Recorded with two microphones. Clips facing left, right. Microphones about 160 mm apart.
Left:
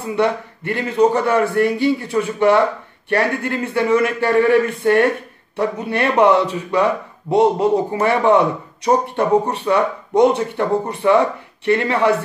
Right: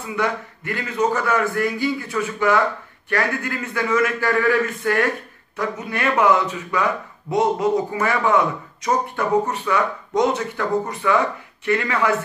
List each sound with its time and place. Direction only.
0.0 s a man's voice: 30° left (ahead or behind)